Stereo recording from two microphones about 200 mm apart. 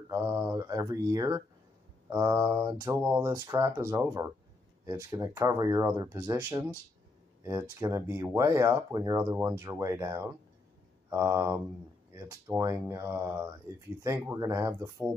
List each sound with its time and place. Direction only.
0.1 s speech: 15° right (ahead or behind)